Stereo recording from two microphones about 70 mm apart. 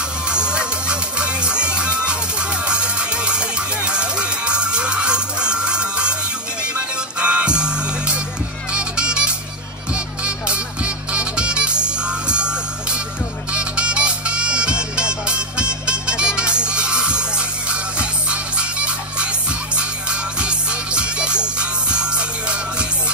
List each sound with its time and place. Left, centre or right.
0.3 s music: centre
7.2 s music: centre